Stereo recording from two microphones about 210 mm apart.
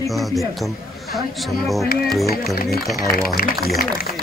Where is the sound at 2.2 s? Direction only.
45° left (ahead or behind).